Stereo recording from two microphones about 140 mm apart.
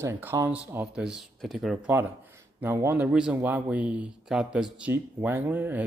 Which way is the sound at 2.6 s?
15° right (ahead or behind).